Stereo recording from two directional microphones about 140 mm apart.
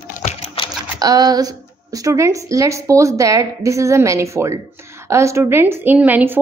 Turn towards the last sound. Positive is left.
turn(degrees=-15)  # may be behind; listen again after turning